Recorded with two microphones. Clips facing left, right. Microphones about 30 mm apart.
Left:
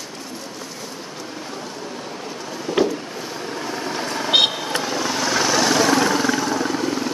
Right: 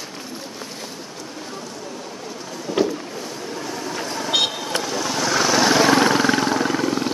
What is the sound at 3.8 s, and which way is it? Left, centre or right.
Vehicle, left.